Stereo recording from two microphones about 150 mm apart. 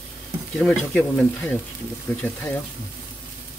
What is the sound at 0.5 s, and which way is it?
Speech, 5° left (ahead or behind).